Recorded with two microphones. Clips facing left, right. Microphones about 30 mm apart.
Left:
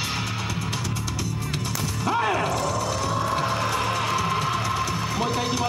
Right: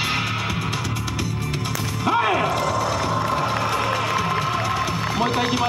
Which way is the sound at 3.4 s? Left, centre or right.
Centre.